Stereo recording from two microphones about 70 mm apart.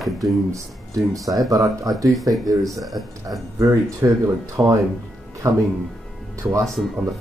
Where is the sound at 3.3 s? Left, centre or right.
Right.